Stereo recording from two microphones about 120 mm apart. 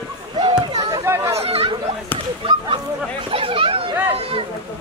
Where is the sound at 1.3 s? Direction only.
55° right (ahead or behind).